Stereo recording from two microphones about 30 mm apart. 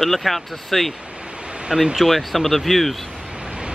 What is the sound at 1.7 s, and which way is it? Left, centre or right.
Speech, centre.